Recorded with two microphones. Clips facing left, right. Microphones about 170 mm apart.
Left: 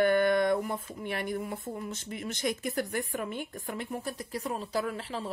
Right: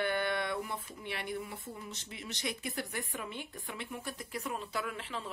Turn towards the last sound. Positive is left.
turn(degrees=35)  # may be behind; listen again after turning